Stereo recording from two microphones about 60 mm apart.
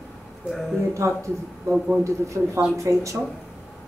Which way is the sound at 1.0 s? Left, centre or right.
Right.